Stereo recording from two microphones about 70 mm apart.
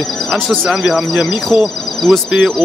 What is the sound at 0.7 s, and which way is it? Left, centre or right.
Speech, centre.